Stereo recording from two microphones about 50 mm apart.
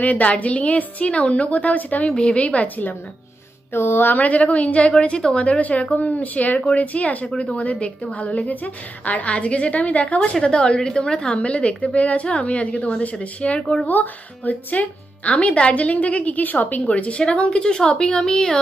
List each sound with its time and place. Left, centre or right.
0.0 s a woman's voice: left
2.1 s a woman's voice: left
3.7 s a sound: left
4.1 s a woman's voice: left
5.6 s a woman's voice: left; by 18.6 s centre